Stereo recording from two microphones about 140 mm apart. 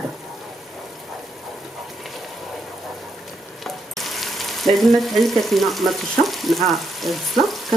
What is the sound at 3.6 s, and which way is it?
Frying, centre (ahead or behind).